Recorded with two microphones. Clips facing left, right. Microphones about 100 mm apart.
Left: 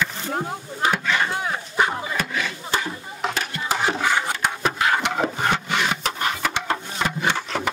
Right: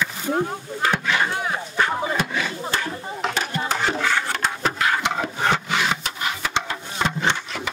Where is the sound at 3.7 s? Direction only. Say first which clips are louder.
Left 3 dB; 10° left (ahead or behind).